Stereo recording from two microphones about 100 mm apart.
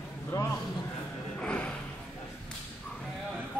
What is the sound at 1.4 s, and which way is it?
Snort, 10° left (ahead or behind).